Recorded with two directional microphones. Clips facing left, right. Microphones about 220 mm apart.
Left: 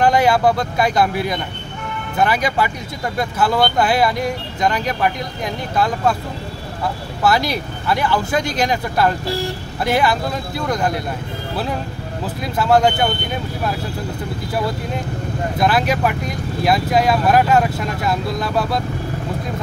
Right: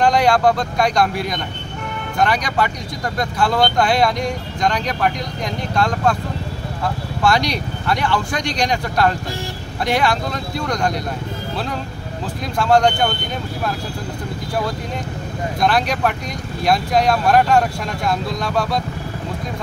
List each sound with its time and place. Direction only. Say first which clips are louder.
0.0 s speech: even; 5° left (ahead or behind)
7.2 s speech: left 1 dB; 5° left (ahead or behind)
12.5 s speech: even; 5° left (ahead or behind)
15.6 s speech: left 1 dB; 5° left (ahead or behind)